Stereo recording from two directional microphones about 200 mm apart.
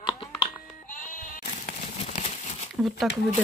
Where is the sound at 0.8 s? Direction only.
40° left (ahead or behind).